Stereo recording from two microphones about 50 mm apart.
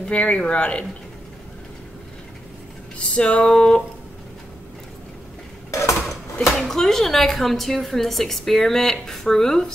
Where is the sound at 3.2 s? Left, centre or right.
Left.